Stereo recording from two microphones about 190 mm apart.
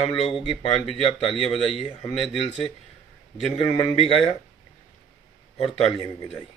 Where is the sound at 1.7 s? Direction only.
25° left (ahead or behind).